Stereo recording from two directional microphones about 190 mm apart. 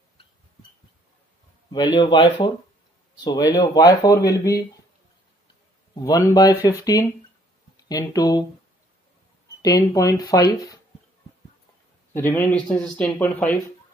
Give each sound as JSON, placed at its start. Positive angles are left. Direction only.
{"t": 2.0, "sound": "speech", "side_deg": 30}
{"t": 6.0, "sound": "speech", "side_deg": 20}
{"t": 9.6, "sound": "speech", "side_deg": 20}
{"t": 12.1, "sound": "speech", "side_deg": 10}